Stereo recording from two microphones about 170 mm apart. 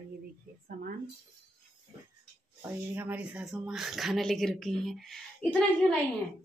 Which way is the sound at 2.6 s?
10° right (ahead or behind).